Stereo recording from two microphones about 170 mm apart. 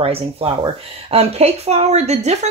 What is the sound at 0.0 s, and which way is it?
Speech, 35° right (ahead or behind).